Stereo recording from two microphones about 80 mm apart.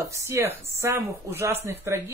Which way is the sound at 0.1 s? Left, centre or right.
Right.